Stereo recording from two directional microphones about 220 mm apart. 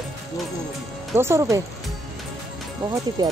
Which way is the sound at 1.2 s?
10° right (ahead or behind).